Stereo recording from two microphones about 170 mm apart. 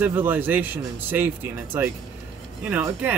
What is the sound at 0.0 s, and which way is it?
Speech, 10° right (ahead or behind).